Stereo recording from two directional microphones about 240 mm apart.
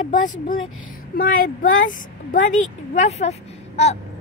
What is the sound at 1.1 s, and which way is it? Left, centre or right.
A woman's voice, left.